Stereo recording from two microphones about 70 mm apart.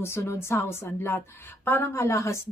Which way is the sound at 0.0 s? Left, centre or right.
Left.